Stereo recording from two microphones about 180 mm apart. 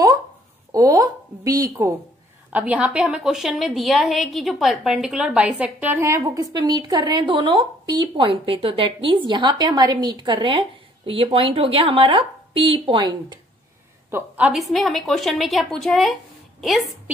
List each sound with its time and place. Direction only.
0.7 s a woman's voice: 20° right (ahead or behind)
2.5 s a woman's voice: 10° right (ahead or behind); by 13.4 s 25° right (ahead or behind)
14.1 s a woman's voice: 10° right (ahead or behind)